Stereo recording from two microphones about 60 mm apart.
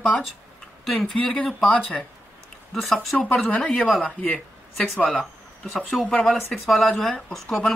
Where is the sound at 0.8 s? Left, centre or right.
Centre.